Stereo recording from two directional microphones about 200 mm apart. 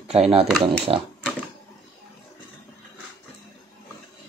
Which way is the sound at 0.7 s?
25° right (ahead or behind).